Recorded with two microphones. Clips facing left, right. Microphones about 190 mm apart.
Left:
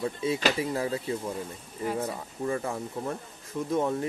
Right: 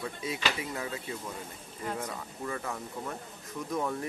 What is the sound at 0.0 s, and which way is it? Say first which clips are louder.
Speech: left 7 dB; 30° left (ahead or behind).